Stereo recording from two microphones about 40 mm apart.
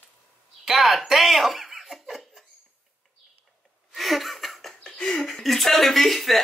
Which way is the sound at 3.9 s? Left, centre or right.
Centre.